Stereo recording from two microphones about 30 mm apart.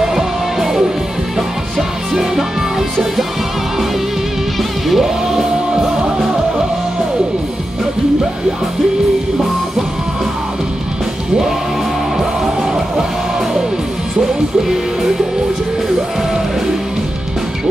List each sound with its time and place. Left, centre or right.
0.0 s music: centre
4.8 s music: centre
5.3 s music: centre